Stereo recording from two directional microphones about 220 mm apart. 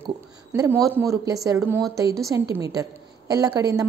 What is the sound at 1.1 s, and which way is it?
Speech, 15° right (ahead or behind).